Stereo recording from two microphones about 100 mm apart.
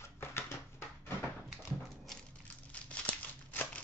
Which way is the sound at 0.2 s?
25° left (ahead or behind).